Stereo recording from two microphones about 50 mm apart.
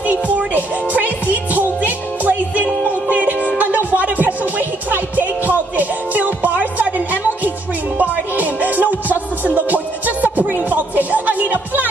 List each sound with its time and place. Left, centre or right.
0.0 s music: right